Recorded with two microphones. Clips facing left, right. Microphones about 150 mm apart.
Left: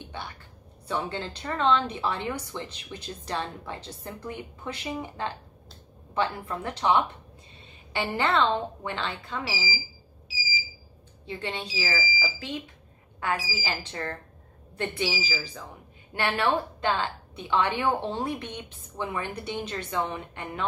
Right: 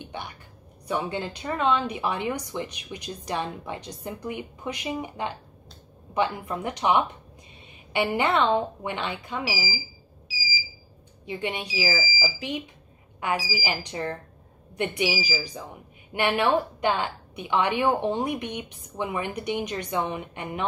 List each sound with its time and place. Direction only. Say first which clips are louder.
0.0 s a sound: right 2 dB; 15° right (ahead or behind)
0.8 s a woman's voice: right 3 dB; 15° right (ahead or behind)
11.2 s a woman's voice: right 3 dB; 15° right (ahead or behind)